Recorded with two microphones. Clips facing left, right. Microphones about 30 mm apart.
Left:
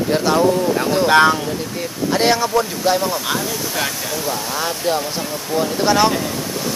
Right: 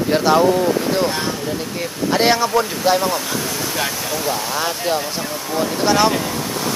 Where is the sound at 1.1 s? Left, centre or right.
Left.